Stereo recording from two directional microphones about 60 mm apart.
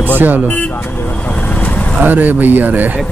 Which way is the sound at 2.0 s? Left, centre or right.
Right.